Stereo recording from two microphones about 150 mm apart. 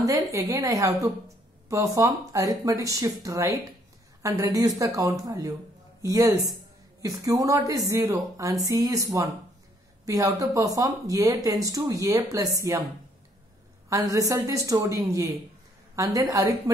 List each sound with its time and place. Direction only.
0.0 s speech: 20° right (ahead or behind)
13.8 s speech: 20° right (ahead or behind)